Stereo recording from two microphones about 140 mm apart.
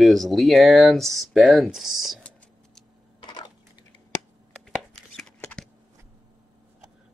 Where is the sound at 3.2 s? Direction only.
30° left (ahead or behind).